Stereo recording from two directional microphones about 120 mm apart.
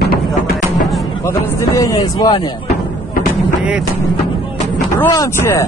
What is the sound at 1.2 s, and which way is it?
A man's voice, 25° left (ahead or behind).